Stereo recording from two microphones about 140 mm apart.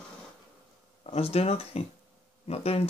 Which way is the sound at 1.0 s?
45° left (ahead or behind).